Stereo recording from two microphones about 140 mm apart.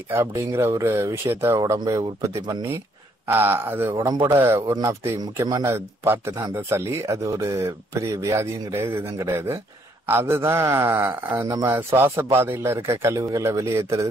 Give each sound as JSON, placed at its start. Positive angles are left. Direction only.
{"t": 0.1, "sound": "a man's voice", "side_deg": -20}